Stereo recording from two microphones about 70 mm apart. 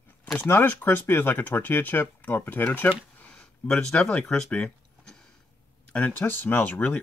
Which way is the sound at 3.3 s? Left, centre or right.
Centre.